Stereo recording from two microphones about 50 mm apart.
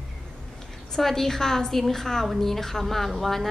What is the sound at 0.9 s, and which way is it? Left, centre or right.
A woman's voice, centre.